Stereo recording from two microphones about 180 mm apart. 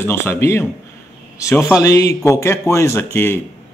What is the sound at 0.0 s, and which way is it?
Speech, 10° left (ahead or behind).